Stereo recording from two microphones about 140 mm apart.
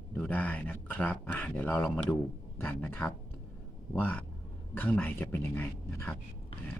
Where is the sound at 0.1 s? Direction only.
10° left (ahead or behind).